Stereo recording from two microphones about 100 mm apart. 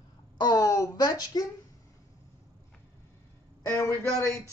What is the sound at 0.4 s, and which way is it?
Speech, 40° left (ahead or behind).